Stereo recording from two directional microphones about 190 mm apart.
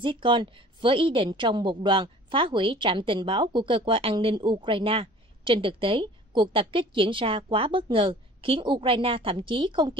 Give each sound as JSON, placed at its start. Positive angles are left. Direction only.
{"t": 0.0, "sound": "a woman's voice", "side_deg": -25}